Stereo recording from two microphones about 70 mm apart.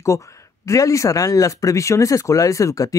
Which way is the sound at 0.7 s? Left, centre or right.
Left.